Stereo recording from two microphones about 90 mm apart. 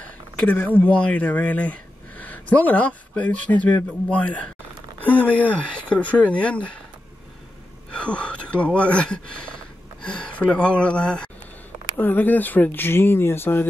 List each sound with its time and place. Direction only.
0.4 s speech: 15° left (ahead or behind)
7.9 s speech: 10° left (ahead or behind)